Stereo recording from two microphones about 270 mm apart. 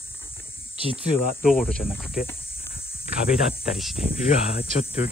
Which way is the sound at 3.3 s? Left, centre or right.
Centre.